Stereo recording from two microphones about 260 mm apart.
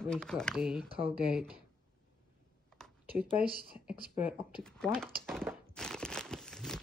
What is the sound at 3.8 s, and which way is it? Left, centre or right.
Speech, centre.